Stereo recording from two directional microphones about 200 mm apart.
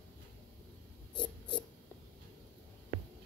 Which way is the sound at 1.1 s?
25° left (ahead or behind).